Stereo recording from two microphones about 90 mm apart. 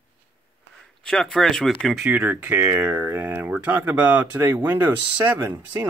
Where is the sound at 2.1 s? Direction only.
20° right (ahead or behind).